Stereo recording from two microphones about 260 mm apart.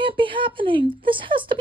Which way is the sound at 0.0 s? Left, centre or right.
Centre.